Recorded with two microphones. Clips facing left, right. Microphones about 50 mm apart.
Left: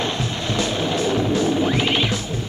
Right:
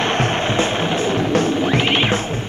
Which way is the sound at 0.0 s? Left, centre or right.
Right.